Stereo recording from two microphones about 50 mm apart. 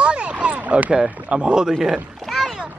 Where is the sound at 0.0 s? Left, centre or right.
Right.